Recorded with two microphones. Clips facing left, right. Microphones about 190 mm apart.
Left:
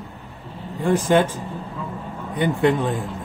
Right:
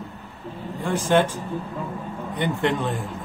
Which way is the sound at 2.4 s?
10° left (ahead or behind).